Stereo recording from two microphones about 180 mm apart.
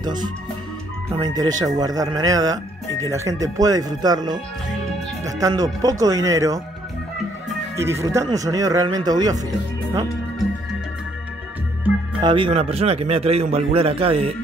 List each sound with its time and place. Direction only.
0.0 s speech: 25° right (ahead or behind)
7.7 s speech: 15° right (ahead or behind)
12.2 s speech: 25° right (ahead or behind)